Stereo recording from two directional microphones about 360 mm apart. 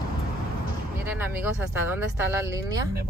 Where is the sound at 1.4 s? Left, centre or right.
Centre.